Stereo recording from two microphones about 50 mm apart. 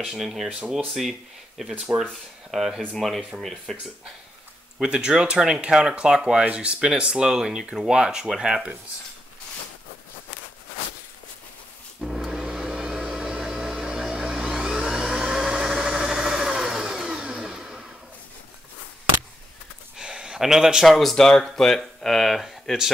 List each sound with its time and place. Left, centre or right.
0.0 s speech: centre
0.5 s speech: centre
1.6 s speech: centre
4.7 s speech: centre
12.0 s a sound: centre
20.0 s a sound: centre
20.9 s speech: centre